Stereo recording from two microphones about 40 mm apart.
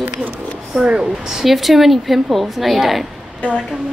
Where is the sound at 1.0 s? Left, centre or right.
Centre.